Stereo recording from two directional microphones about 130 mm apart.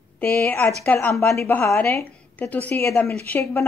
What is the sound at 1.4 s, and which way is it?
Speech, 20° left (ahead or behind).